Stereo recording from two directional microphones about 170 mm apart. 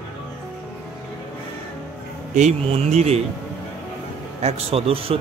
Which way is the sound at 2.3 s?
40° right (ahead or behind).